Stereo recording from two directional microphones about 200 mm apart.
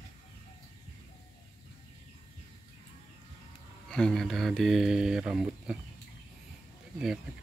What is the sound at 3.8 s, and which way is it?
Speech, 5° left (ahead or behind).